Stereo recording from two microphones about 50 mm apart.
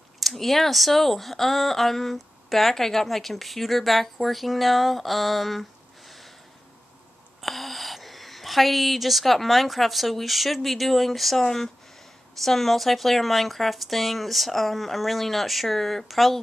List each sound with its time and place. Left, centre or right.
0.2 s speech: centre
7.4 s a woman's voice: centre